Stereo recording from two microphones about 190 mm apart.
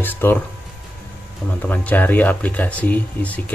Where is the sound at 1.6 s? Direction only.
10° left (ahead or behind).